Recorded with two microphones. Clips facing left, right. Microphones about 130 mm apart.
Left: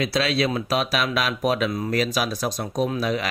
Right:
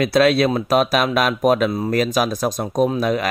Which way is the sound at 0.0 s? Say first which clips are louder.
Right 7 dB; 55° right (ahead or behind).